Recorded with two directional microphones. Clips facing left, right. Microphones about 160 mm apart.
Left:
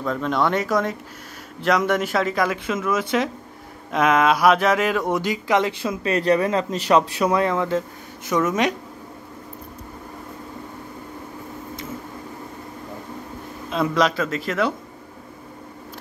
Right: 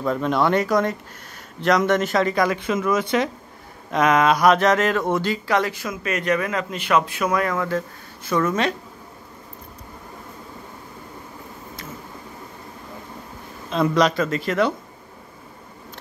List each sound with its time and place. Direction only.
0.0 s speech: 5° right (ahead or behind); by 8.7 s 15° left (ahead or behind)
13.7 s speech: 5° left (ahead or behind)